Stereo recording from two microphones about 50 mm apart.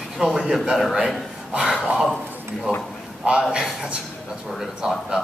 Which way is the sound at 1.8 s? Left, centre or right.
Centre.